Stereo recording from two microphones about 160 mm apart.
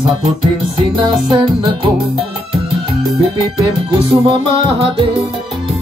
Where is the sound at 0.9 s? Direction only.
30° right (ahead or behind).